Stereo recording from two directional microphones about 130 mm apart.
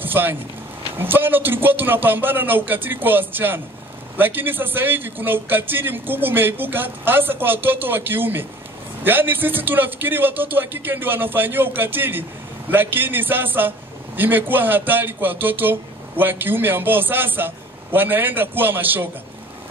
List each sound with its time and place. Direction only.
0.0 s a man's voice: 15° right (ahead or behind)